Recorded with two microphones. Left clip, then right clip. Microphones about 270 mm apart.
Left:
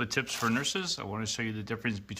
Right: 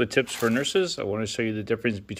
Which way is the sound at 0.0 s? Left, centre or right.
Centre.